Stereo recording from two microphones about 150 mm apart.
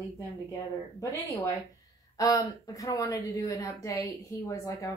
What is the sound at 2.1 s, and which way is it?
Speech, 25° left (ahead or behind).